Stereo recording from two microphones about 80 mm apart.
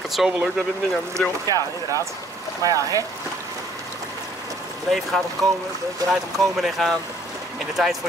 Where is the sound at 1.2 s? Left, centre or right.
Centre.